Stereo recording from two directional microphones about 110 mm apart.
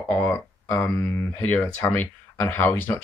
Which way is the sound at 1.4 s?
20° left (ahead or behind).